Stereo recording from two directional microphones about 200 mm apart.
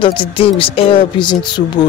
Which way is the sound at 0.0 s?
25° left (ahead or behind).